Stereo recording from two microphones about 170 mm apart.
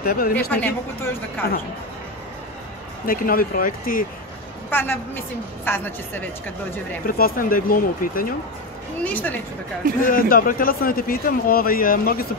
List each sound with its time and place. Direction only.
0.0 s a man's voice: 65° left (ahead or behind)
0.5 s a woman's voice: 10° left (ahead or behind)
3.1 s a man's voice: 55° left (ahead or behind)
4.6 s a woman's voice: 10° left (ahead or behind)
7.1 s a man's voice: 55° left (ahead or behind)
9.0 s a woman's voice: 10° left (ahead or behind)
10.0 s a man's voice: 55° left (ahead or behind)